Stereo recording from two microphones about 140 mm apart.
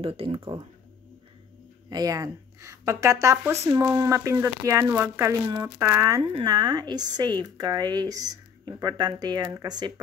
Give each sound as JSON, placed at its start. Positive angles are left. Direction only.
{"t": 0.0, "sound": "speech", "side_deg": -40}
{"t": 1.9, "sound": "speech", "side_deg": -25}